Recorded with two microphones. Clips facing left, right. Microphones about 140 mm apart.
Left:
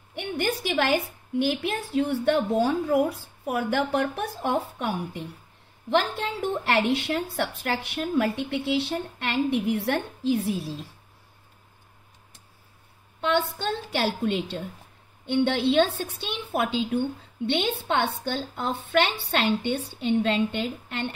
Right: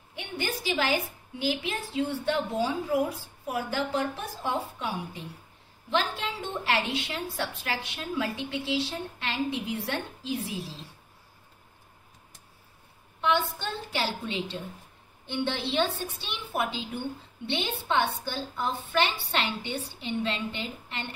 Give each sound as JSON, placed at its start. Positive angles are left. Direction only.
{"t": 0.1, "sound": "a woman's voice", "side_deg": 60}
{"t": 13.2, "sound": "a woman's voice", "side_deg": 60}